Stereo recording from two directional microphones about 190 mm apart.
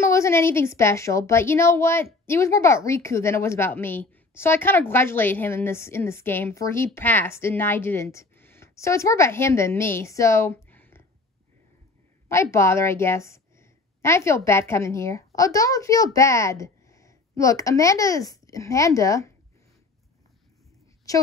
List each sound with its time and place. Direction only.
0.0 s a woman's voice: 15° left (ahead or behind)
12.3 s a woman's voice: 15° left (ahead or behind)